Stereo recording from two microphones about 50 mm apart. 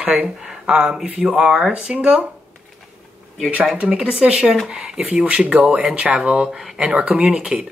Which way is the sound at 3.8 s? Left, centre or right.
Right.